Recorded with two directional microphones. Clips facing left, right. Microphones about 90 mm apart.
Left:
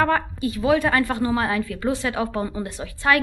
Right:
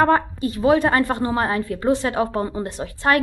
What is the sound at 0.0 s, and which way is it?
A woman's voice, 35° right (ahead or behind).